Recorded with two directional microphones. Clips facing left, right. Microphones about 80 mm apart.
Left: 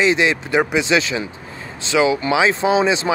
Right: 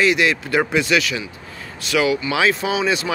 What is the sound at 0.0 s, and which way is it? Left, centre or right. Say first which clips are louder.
Speech: left 1 dB; left.